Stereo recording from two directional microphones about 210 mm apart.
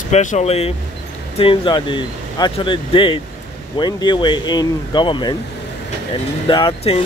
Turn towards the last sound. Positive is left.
turn(degrees=25)  # may be behind; listen again after turning